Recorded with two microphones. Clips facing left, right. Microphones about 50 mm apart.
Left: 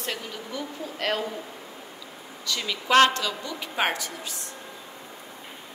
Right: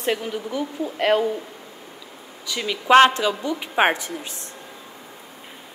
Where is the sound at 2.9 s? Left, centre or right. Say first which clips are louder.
Right 5 dB; right.